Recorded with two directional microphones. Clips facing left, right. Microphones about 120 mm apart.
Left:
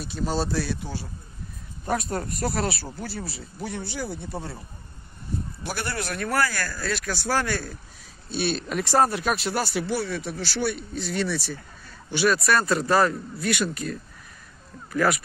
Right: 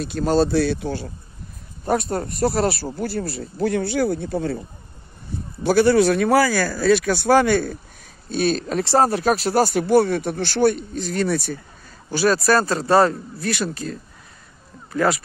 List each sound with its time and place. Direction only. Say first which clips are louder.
0.1 s speech: right 8 dB; 65° right (ahead or behind)
1.9 s speech: right 5 dB; 35° right (ahead or behind)
3.0 s speech: right 9 dB; 55° right (ahead or behind)
5.8 s speech: right 16 dB; 90° right; by 11.5 s 50° right (ahead or behind)
12.1 s speech: right 4 dB; 35° right (ahead or behind)